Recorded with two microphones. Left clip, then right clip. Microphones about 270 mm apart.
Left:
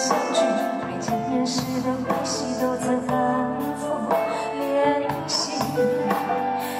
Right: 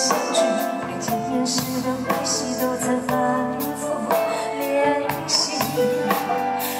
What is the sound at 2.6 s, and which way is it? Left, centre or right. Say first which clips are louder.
Music: even; centre.